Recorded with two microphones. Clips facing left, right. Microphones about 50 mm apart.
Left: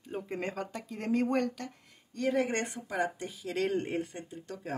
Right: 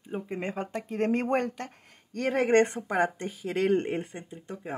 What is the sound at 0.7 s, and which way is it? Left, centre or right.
Speech, right.